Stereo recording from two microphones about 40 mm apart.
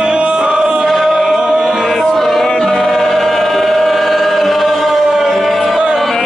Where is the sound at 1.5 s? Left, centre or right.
Centre.